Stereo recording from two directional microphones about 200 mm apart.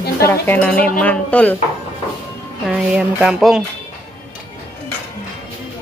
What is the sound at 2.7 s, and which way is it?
Speech, 5° right (ahead or behind).